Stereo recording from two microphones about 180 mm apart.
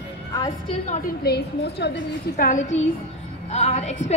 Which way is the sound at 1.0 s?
60° left (ahead or behind).